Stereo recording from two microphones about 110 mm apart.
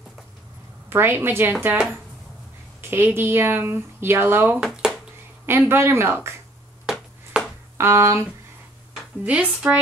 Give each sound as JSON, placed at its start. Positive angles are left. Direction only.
{"t": 0.8, "sound": "speech", "side_deg": -20}
{"t": 4.6, "sound": "a sound", "side_deg": -5}
{"t": 5.5, "sound": "speech", "side_deg": -20}
{"t": 7.3, "sound": "a sound", "side_deg": -10}
{"t": 7.7, "sound": "speech", "side_deg": -25}
{"t": 9.2, "sound": "speech", "side_deg": -10}